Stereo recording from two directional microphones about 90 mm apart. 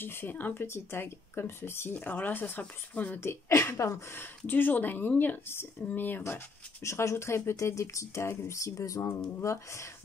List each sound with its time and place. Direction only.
0.0 s speech: 25° left (ahead or behind)